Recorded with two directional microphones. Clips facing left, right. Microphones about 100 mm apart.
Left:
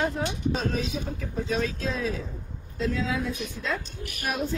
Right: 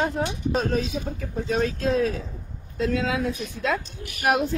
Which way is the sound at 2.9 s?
65° right (ahead or behind).